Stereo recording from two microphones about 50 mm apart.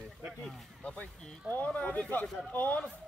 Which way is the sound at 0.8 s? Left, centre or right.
Left.